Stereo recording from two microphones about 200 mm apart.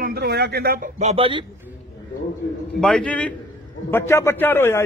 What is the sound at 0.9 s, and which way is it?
Speech, 30° right (ahead or behind).